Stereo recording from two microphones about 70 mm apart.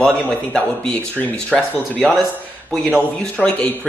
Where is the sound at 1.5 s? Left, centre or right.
Centre.